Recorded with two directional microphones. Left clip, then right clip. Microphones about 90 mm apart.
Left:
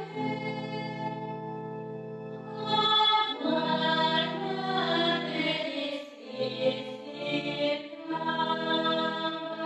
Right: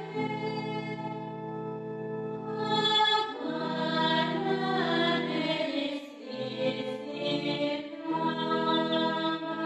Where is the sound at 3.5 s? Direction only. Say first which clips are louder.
Left 3 dB; 30° right (ahead or behind).